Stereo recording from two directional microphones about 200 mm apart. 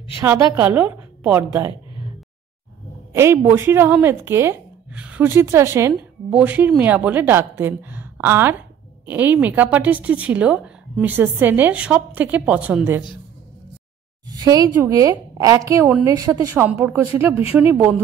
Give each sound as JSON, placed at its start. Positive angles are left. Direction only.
{"t": 0.2, "sound": "a woman's voice", "side_deg": -15}
{"t": 3.1, "sound": "a woman's voice", "side_deg": -15}
{"t": 14.3, "sound": "a woman's voice", "side_deg": -20}